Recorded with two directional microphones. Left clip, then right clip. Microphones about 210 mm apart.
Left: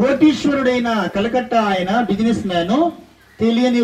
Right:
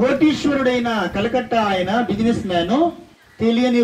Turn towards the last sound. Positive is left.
turn(degrees=45)  # may be behind; listen again after turning